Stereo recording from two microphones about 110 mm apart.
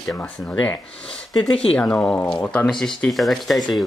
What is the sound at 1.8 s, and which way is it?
Speech, 10° left (ahead or behind).